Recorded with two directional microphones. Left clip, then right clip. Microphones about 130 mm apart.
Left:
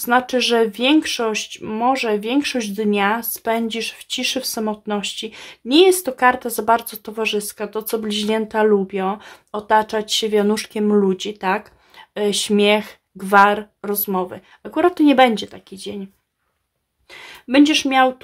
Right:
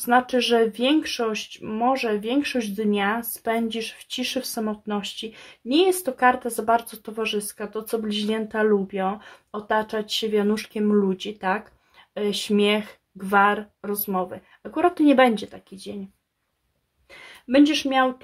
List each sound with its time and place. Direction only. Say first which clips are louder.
0.0 s speech: left 3 dB; 25° left (ahead or behind)
17.1 s speech: left 3 dB; 30° left (ahead or behind)